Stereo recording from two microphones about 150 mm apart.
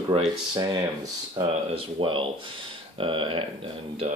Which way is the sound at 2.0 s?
35° right (ahead or behind).